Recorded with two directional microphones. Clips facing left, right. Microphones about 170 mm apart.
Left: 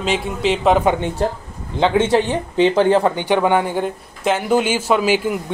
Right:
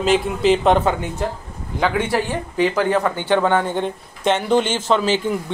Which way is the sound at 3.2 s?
15° left (ahead or behind).